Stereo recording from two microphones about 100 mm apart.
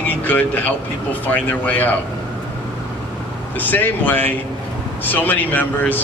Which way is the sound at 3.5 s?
20° left (ahead or behind).